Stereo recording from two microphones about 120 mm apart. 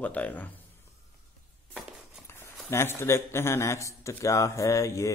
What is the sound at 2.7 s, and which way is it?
Speech, 20° left (ahead or behind).